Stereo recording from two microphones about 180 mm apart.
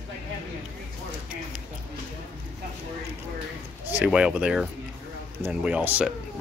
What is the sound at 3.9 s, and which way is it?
Speech, 5° right (ahead or behind).